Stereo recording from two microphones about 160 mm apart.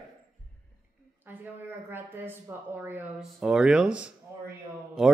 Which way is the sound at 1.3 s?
10° right (ahead or behind).